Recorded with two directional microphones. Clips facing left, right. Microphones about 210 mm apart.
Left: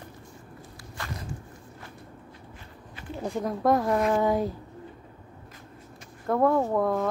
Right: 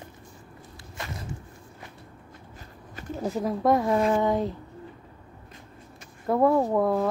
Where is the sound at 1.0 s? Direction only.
20° right (ahead or behind).